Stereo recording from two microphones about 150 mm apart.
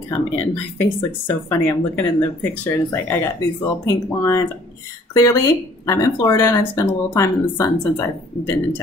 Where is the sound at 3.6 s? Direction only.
20° left (ahead or behind).